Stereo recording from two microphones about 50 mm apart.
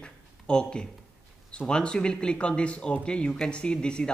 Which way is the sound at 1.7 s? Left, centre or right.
Centre.